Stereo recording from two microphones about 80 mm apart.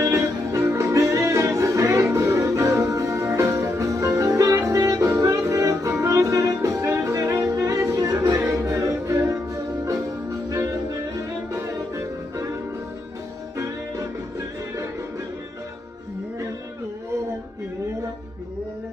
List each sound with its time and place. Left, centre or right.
0.0 s music: right
10.5 s music: right